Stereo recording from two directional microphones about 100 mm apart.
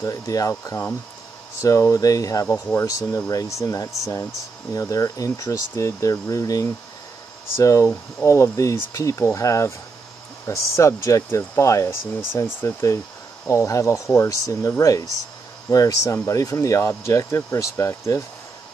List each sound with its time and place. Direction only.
0.0 s speech: 35° left (ahead or behind)
2.4 s speech: 20° left (ahead or behind)
2.9 s speech: 35° left (ahead or behind)